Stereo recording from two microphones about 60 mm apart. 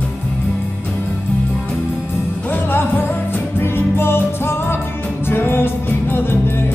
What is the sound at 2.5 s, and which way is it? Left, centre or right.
Music, left.